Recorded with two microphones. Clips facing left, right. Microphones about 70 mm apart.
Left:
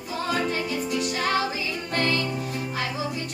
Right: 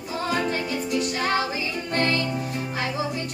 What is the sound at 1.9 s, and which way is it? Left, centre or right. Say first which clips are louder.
Music: right 1 dB; right.